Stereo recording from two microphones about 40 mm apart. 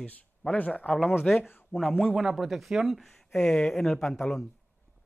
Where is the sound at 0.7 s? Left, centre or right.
Left.